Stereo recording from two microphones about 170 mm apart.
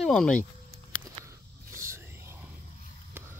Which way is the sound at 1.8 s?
15° right (ahead or behind).